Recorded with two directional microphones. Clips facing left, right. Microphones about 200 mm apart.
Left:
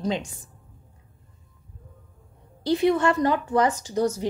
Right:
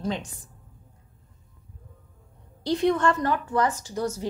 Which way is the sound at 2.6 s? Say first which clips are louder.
Left 2 dB; 5° left (ahead or behind).